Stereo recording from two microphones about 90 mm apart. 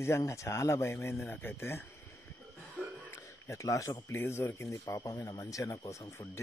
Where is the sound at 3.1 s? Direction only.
35° left (ahead or behind).